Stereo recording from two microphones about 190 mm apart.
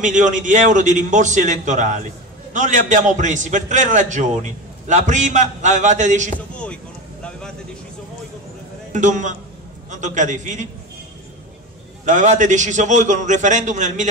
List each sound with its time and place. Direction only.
0.0 s a man's voice: 40° right (ahead or behind)
6.3 s a man's voice: 5° left (ahead or behind)
8.9 s a man's voice: 40° right (ahead or behind)
12.0 s a man's voice: 40° right (ahead or behind)